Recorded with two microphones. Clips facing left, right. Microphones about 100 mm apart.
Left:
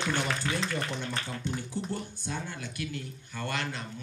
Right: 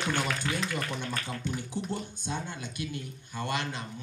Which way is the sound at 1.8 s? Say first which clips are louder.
Right 1 dB; 20° right (ahead or behind).